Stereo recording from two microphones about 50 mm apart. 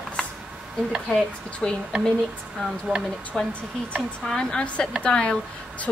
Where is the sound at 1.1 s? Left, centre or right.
Centre.